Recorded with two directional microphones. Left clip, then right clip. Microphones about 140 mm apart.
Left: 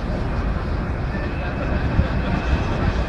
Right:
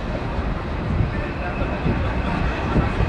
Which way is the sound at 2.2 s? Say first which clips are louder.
Right 1 dB; centre (ahead or behind).